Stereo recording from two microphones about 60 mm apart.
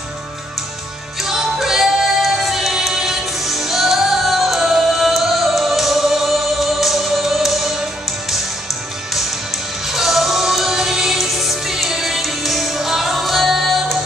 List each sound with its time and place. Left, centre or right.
1.2 s music: centre
9.8 s music: centre